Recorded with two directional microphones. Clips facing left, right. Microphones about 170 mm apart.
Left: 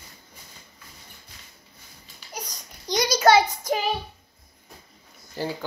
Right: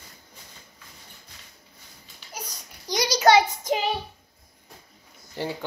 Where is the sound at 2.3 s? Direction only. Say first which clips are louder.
Left 1 dB; 10° right (ahead or behind).